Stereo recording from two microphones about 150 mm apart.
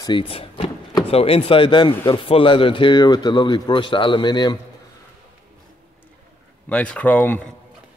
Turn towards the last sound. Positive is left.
turn(degrees=10)  # may be behind; listen again after turning